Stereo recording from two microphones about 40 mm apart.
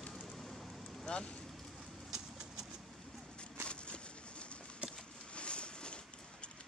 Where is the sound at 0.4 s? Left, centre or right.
Centre.